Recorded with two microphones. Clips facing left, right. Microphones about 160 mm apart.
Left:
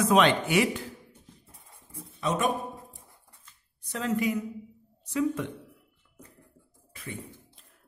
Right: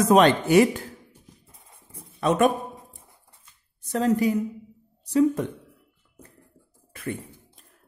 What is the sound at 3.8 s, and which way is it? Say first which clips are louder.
A woman's voice: right 7 dB; 40° right (ahead or behind).